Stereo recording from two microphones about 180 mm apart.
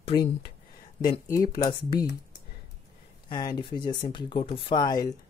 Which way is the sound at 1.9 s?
60° left (ahead or behind).